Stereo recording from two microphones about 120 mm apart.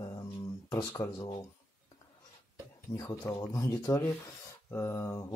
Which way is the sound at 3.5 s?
25° left (ahead or behind).